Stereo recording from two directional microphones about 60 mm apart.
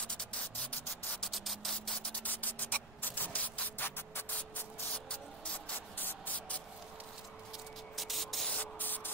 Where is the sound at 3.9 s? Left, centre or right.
Left.